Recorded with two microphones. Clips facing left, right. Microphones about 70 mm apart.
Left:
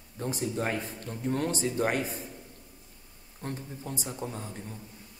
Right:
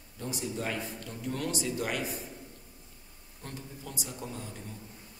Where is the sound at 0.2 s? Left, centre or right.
Left.